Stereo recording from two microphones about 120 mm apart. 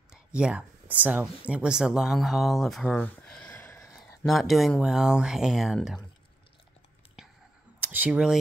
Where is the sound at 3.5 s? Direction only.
20° left (ahead or behind).